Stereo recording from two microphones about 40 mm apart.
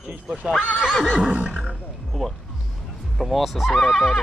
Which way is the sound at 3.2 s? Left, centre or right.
Centre.